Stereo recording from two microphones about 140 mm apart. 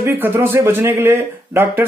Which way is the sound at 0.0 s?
15° right (ahead or behind).